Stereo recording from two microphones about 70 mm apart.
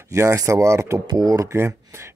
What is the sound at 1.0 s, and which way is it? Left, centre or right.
Speech, right.